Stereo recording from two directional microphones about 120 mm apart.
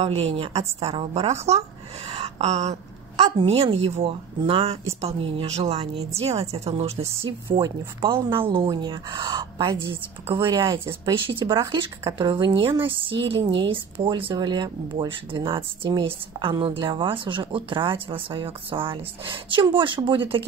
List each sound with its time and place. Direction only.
0.0 s speech: 55° right (ahead or behind)
2.0 s a sound: 55° right (ahead or behind)
3.3 s speech: 55° right (ahead or behind)
7.5 s speech: 45° right (ahead or behind)